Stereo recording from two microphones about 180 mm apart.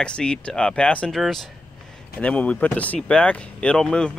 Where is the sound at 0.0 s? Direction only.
5° left (ahead or behind).